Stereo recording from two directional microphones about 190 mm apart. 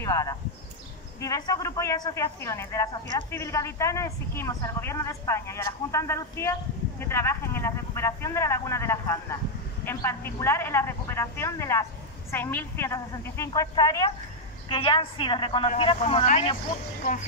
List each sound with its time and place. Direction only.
0.0 s a woman's voice: 15° left (ahead or behind)